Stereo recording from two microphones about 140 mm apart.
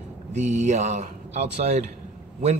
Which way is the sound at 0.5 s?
55° right (ahead or behind).